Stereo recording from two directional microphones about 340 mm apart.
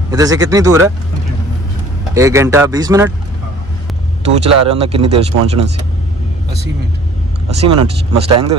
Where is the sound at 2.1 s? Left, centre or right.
Centre.